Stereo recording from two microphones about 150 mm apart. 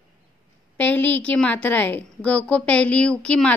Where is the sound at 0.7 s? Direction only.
10° left (ahead or behind).